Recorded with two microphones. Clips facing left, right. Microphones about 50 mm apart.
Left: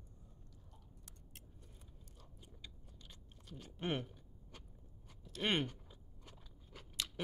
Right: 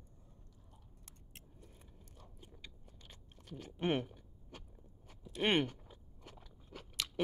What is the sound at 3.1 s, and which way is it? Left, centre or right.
Chewing, right.